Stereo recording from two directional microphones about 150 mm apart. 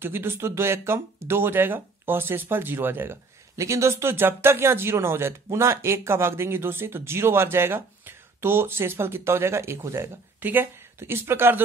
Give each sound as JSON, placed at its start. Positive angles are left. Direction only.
{"t": 0.0, "sound": "speech", "side_deg": -15}